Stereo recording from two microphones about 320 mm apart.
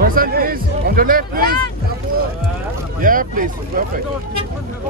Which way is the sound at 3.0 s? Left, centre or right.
Right.